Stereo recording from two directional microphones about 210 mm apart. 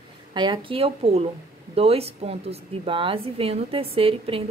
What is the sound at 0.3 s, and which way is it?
A woman's voice, 20° right (ahead or behind).